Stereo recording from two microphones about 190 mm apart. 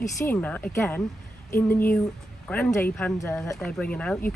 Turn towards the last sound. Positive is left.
turn(degrees=5)  # may be behind; listen again after turning